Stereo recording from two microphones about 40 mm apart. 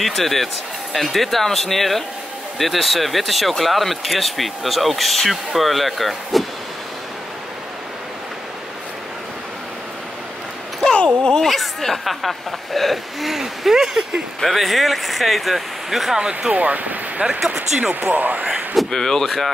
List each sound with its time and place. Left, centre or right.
0.0 s speech: centre
10.8 s a sound: centre
11.4 s speech: centre
16.2 s speech: right
16.5 s speech: right
17.2 s speech: centre
18.1 s speech: right
18.9 s speech: centre